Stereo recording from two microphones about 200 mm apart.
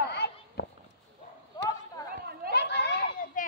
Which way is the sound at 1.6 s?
20° left (ahead or behind).